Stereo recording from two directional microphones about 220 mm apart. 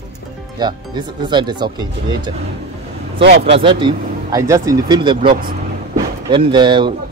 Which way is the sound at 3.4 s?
25° right (ahead or behind).